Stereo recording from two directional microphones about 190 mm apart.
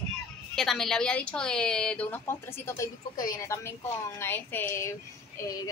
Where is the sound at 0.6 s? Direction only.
Centre (ahead or behind).